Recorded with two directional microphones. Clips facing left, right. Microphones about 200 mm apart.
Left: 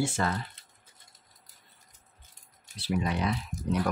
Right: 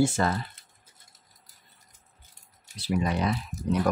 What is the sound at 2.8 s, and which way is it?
Speech, 40° right (ahead or behind).